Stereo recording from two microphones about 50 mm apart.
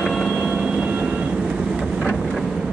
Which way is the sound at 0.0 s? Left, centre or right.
Centre.